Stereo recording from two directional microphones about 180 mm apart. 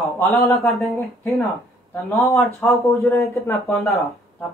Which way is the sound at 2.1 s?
Centre (ahead or behind).